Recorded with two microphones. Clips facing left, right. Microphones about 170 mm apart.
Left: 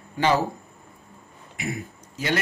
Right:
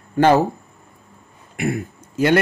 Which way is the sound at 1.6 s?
50° right (ahead or behind).